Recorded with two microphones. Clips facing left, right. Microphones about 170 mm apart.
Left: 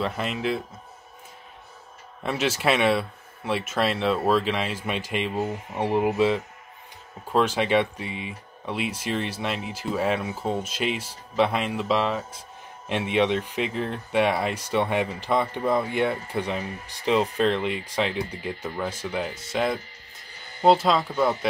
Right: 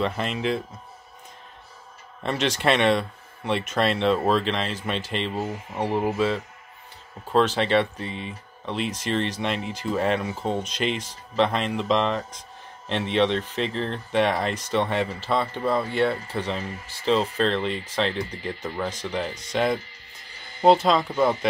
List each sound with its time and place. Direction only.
0.0 s speech: 5° left (ahead or behind)
2.2 s speech: 5° left (ahead or behind)